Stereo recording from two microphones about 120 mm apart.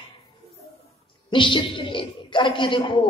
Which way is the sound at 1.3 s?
45° left (ahead or behind).